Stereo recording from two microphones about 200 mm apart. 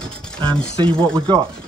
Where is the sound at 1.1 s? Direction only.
25° right (ahead or behind).